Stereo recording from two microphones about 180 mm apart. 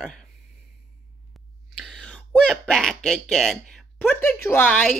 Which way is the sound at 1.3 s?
Centre (ahead or behind).